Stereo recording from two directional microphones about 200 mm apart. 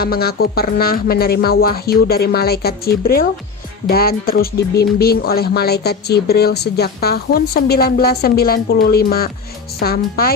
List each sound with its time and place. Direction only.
0.0 s speech: 50° left (ahead or behind)